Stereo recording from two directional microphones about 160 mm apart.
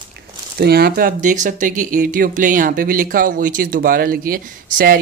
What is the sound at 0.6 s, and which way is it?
Speech, 80° right.